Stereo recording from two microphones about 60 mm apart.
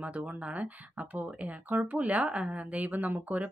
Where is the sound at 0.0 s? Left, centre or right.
Right.